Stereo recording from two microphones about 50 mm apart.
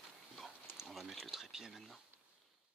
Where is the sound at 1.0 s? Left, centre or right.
Centre.